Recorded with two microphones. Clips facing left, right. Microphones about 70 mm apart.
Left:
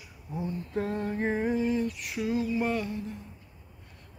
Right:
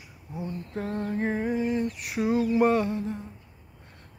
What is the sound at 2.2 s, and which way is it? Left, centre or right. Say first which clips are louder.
Mantra: right 6 dB; right.